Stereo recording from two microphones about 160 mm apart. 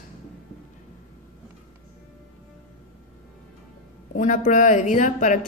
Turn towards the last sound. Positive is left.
turn(degrees=50)  # may be behind; listen again after turning